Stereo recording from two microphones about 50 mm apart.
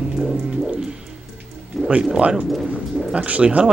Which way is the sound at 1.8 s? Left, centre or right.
Right.